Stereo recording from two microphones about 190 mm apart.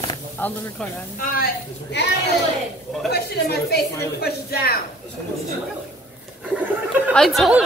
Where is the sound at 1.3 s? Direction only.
60° left (ahead or behind).